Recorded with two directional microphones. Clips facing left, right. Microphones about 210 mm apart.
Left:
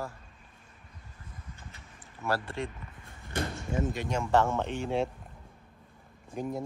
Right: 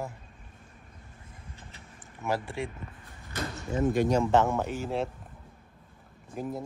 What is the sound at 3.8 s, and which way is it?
Speech, 45° right (ahead or behind).